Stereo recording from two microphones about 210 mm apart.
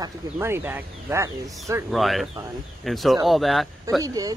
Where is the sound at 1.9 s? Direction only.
Centre (ahead or behind).